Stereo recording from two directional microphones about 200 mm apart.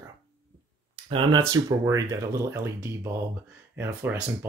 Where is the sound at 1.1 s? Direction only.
25° right (ahead or behind).